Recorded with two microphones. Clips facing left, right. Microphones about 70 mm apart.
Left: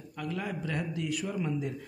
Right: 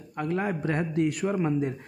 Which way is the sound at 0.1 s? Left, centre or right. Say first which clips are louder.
Right 7 dB; right.